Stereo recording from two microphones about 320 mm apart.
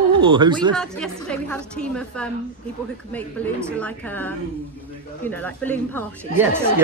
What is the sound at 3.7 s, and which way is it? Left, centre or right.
A woman's voice, centre.